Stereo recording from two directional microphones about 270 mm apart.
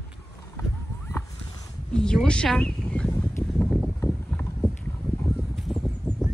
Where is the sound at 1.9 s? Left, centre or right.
Centre.